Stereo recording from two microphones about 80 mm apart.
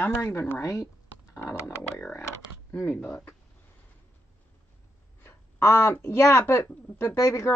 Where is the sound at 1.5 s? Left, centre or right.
Left.